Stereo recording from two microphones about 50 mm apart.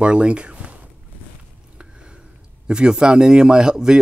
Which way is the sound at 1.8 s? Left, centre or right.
Right.